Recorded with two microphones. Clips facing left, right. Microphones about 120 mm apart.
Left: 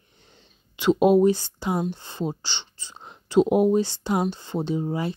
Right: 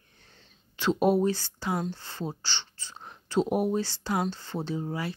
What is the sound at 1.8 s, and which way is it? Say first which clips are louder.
Speech: left 6 dB; 20° left (ahead or behind).